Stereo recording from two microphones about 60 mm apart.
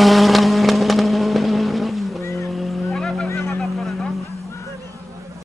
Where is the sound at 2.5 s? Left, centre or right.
Centre.